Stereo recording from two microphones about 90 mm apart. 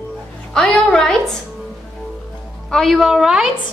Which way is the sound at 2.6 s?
5° left (ahead or behind).